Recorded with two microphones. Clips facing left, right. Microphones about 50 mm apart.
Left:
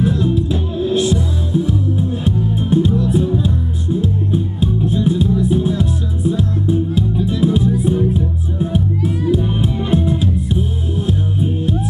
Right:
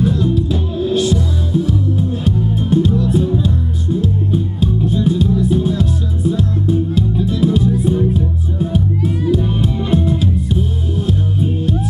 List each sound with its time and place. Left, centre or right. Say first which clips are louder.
0.0 s music: right 1 dB; centre